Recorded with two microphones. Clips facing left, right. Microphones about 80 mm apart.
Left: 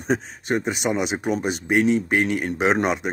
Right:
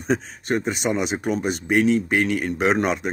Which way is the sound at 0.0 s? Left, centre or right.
Centre.